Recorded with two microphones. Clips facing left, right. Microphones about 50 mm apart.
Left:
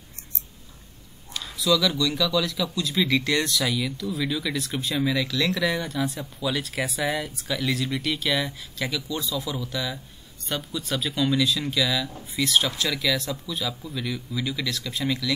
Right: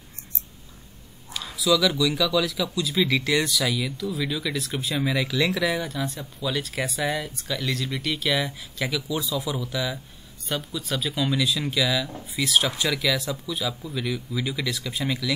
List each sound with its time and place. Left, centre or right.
1.3 s speech: centre